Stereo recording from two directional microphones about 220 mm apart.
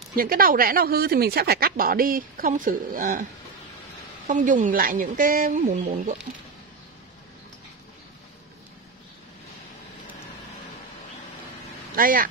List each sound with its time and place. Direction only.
0.1 s speech: 40° right (ahead or behind)
4.3 s speech: 35° right (ahead or behind)
11.9 s speech: 40° right (ahead or behind)